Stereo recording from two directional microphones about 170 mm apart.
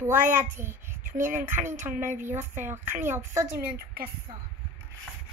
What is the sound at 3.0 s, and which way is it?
Speech, 10° right (ahead or behind).